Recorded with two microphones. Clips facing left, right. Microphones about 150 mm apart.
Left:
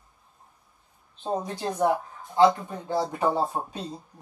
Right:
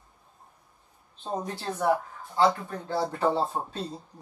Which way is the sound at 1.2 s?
15° left (ahead or behind).